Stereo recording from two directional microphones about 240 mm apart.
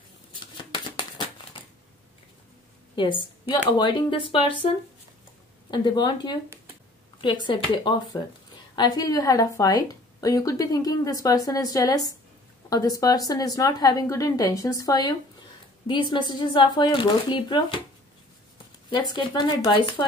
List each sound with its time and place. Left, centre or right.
0.7 s crumpling: centre
3.0 s a woman's voice: centre
18.9 s speech: centre